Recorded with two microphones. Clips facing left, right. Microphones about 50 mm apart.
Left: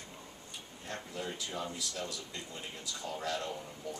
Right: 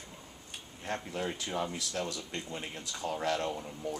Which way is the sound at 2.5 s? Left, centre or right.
Right.